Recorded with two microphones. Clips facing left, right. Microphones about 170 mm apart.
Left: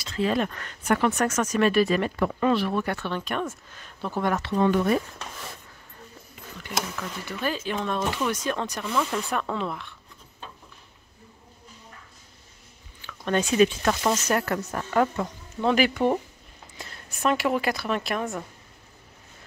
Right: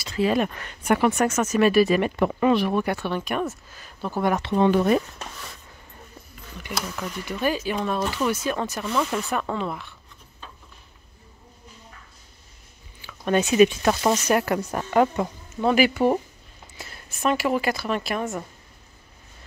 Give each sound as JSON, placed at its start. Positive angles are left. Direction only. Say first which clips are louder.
{"t": 0.0, "sound": "speech", "louder": "right 3 dB", "side_deg": -10}
{"t": 4.3, "sound": "speech", "louder": "right 3 dB", "side_deg": -20}
{"t": 7.2, "sound": "speech", "louder": "right 4 dB", "side_deg": -15}
{"t": 13.0, "sound": "speech", "louder": "right 3 dB", "side_deg": -10}
{"t": 15.5, "sound": "speech", "louder": "right 2 dB", "side_deg": -5}